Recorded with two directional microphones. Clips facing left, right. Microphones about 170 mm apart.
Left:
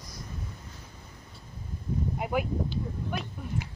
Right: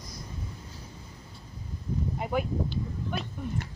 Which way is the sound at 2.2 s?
5° left (ahead or behind).